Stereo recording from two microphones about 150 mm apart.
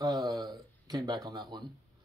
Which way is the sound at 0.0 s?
25° right (ahead or behind).